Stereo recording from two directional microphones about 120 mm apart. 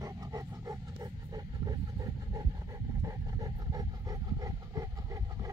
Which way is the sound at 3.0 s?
30° right (ahead or behind).